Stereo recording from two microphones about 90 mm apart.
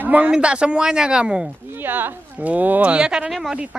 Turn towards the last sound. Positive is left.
turn(degrees=0)  # may be behind; listen again after turning